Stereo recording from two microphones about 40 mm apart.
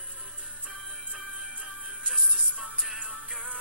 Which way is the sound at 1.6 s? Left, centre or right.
Centre.